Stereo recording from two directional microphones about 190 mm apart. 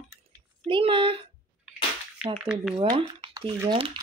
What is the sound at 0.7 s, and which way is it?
Speech, 25° right (ahead or behind).